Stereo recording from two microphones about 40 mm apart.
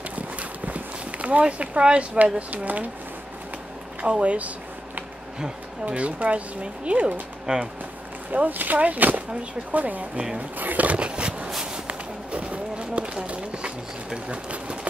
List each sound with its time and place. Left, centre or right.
0.1 s walk: right
2.1 s speech: right
4.0 s speech: right
5.9 s speech: right
8.3 s speech: right
11.0 s a sound: right